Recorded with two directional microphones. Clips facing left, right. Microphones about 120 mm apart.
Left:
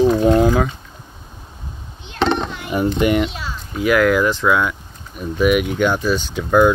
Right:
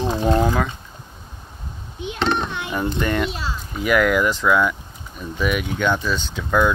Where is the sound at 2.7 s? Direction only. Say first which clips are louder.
Left 7 dB; 15° left (ahead or behind).